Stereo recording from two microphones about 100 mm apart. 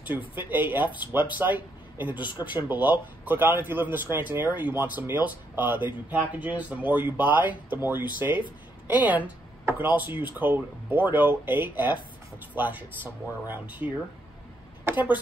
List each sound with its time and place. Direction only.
0.0 s a man's voice: 20° right (ahead or behind)
14.9 s speech: 15° right (ahead or behind)